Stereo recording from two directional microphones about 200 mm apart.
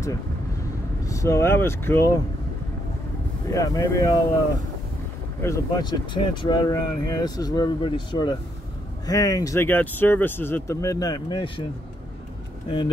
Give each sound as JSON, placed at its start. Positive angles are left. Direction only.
{"t": 1.0, "sound": "speech", "side_deg": 15}
{"t": 3.5, "sound": "speech", "side_deg": 15}
{"t": 5.4, "sound": "speech", "side_deg": 15}
{"t": 12.6, "sound": "speech", "side_deg": 20}